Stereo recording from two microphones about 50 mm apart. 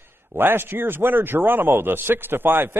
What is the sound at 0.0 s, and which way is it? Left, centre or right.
A man's voice, right.